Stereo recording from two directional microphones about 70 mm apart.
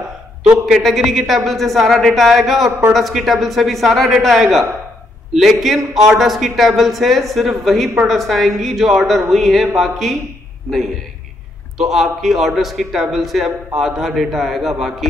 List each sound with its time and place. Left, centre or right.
0.7 s a man's voice: centre
11.8 s a man's voice: centre